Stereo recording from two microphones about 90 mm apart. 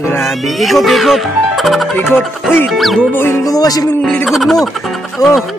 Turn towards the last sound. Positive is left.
turn(degrees=35)  # may be behind; listen again after turning